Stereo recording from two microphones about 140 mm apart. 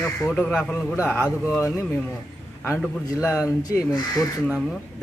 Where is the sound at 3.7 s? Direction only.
25° left (ahead or behind).